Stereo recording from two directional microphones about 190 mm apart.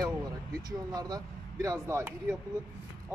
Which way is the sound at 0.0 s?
20° right (ahead or behind).